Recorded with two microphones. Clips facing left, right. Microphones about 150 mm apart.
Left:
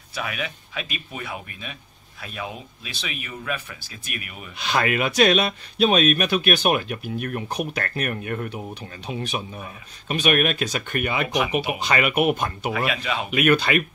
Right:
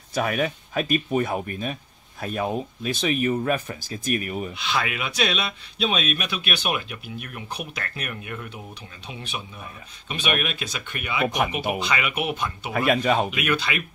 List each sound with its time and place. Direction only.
0.1 s speech: 45° right (ahead or behind)
4.6 s speech: 45° left (ahead or behind)
11.2 s speech: 45° right (ahead or behind)
11.9 s speech: 50° left (ahead or behind)
12.7 s speech: 45° right (ahead or behind)
13.3 s speech: 55° left (ahead or behind)